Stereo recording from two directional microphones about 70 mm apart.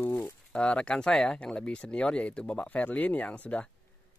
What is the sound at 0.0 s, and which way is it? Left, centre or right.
Speech, centre.